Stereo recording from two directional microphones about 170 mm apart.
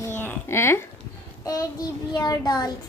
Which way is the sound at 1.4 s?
20° left (ahead or behind).